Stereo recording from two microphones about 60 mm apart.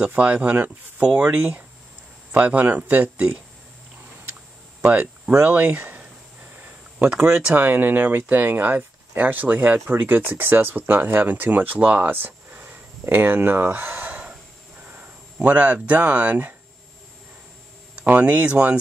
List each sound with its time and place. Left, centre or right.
0.2 s speech: right
4.8 s speech: right
6.6 s a sound: right
7.2 s speech: right
7.5 s speech: right
15.4 s speech: right
18.0 s speech: right